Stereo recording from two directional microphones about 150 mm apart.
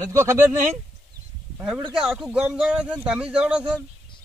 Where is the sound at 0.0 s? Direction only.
20° right (ahead or behind).